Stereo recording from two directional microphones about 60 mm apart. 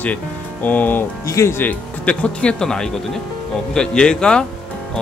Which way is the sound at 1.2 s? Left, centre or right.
Left.